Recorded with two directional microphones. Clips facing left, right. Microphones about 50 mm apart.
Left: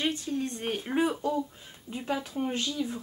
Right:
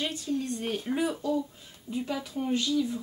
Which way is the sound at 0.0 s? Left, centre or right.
Left.